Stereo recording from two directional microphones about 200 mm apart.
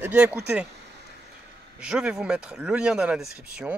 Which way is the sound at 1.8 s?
5° right (ahead or behind).